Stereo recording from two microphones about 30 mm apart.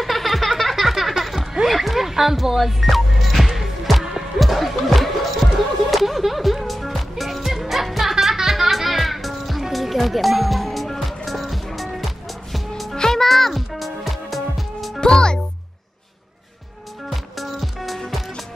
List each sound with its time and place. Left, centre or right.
0.0 s a sound: centre
1.7 s rowboat: centre
2.4 s music: centre
15.0 s music: left
17.1 s music: centre